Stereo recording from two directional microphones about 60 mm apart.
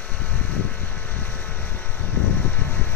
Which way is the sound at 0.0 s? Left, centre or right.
Left.